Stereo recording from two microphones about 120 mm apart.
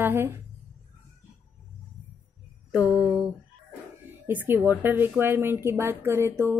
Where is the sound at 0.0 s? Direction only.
20° right (ahead or behind).